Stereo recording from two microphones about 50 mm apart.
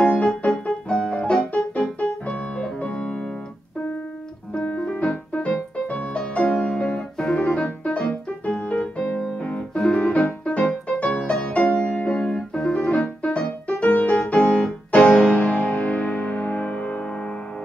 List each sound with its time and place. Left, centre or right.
0.0 s music: left
4.6 s piano: centre
4.9 s music: left
9.1 s keyboard: left
9.8 s music: centre
10.9 s music: left
12.4 s keyboard: centre
12.8 s music: left